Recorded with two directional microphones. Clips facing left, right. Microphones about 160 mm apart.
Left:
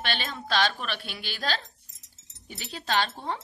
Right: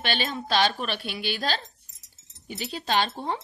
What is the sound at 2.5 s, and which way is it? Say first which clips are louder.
Speech: right 2 dB; 20° right (ahead or behind).